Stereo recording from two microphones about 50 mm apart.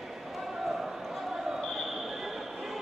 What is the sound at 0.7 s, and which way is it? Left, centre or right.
Basketball bounce, centre.